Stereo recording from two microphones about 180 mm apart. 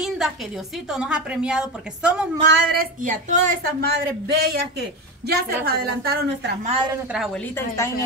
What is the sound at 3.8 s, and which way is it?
A woman's voice, 65° right (ahead or behind).